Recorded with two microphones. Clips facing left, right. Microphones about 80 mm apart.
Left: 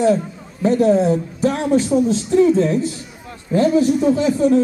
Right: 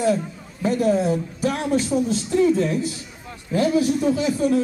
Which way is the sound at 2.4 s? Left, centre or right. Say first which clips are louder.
Left 3 dB; left.